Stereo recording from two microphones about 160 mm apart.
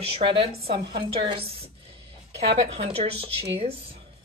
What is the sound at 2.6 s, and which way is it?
Speech, 40° right (ahead or behind).